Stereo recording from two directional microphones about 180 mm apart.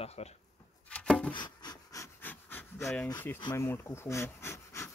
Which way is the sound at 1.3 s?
25° left (ahead or behind).